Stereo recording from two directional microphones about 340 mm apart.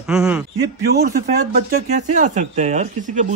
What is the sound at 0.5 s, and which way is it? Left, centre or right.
Speech, right.